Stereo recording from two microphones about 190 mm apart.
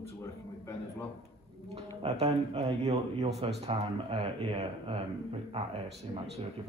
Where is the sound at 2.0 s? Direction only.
35° right (ahead or behind).